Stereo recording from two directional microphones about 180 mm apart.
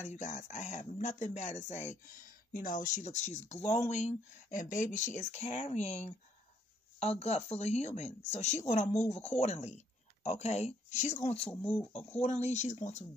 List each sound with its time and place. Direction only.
0.1 s speech: 40° left (ahead or behind)
8.8 s speech: 10° left (ahead or behind)
9.1 s speech: 35° left (ahead or behind)